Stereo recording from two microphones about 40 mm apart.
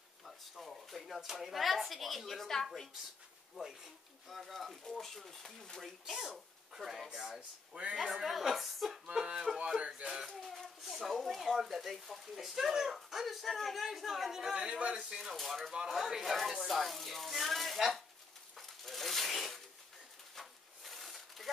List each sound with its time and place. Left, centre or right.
0.2 s speech: centre
3.5 s speech: centre
5.8 s speech: centre
7.1 s speech: centre
7.7 s a man's voice: right
8.3 s speech: centre
9.0 s speech: right
10.2 s speech: centre
14.5 s speech: right
15.0 s speech: centre
15.3 s speech: centre
18.6 s a sound: centre